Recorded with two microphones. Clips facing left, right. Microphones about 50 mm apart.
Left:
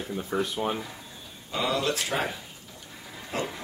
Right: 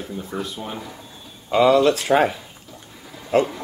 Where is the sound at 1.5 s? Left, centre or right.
Right.